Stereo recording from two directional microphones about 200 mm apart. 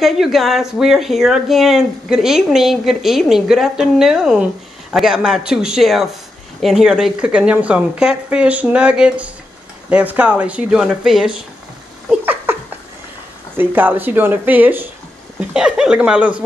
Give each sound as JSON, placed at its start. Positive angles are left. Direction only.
{"t": 0.0, "sound": "speech", "side_deg": 0}
{"t": 12.1, "sound": "a sound", "side_deg": -10}
{"t": 13.6, "sound": "speech", "side_deg": -10}